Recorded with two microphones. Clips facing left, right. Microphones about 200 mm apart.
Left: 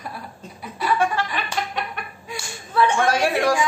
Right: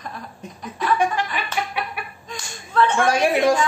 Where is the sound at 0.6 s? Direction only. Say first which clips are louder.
Right 1 dB; 10° left (ahead or behind).